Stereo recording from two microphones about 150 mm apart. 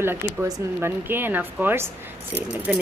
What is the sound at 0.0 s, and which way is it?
Speech, 15° right (ahead or behind).